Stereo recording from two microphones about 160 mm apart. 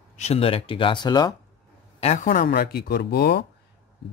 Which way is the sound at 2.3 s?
65° left (ahead or behind).